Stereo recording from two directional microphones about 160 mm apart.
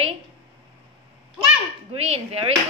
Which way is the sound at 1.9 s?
40° right (ahead or behind).